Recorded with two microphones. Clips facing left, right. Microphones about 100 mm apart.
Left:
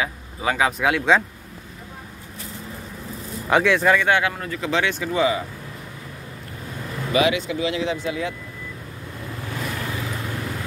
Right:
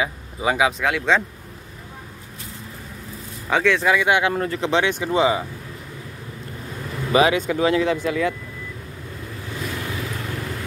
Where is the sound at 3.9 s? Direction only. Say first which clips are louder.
Even; 10° right (ahead or behind).